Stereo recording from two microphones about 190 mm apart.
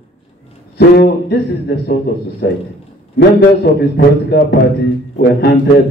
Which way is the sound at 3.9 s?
60° left (ahead or behind).